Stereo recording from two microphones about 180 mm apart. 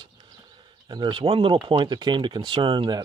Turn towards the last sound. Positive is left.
turn(degrees=-25)  # may be behind; listen again after turning